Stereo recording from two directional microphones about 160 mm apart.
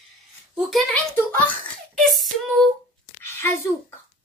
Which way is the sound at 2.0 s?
Centre (ahead or behind).